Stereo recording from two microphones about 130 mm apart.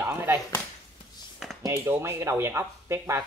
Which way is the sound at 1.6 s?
20° right (ahead or behind).